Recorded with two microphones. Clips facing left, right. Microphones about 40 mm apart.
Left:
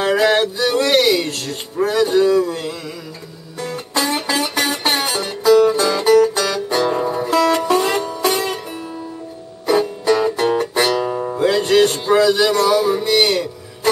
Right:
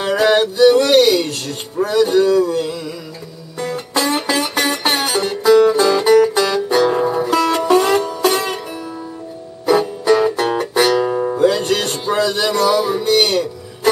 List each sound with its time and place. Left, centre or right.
0.0 s male singing: centre
0.7 s speech: centre
2.5 s speech: centre
3.7 s music: centre
9.7 s music: centre
11.3 s music: centre
13.0 s music: centre